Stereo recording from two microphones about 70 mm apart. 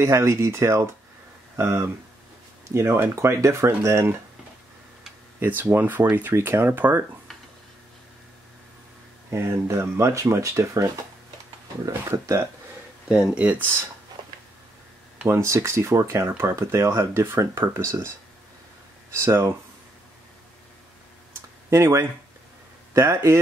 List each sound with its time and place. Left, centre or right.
0.0 s speech: right
5.4 s speech: right
9.3 s speech: right
13.1 s speech: centre
15.2 s speech: right
19.1 s speech: right
21.6 s speech: right